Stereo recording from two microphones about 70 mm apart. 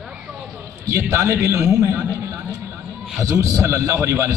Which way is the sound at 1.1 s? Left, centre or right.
Right.